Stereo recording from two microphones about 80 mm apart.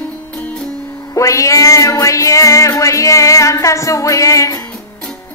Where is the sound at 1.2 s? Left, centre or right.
Left.